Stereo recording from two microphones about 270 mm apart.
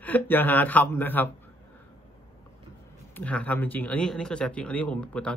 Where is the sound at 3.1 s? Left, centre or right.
Centre.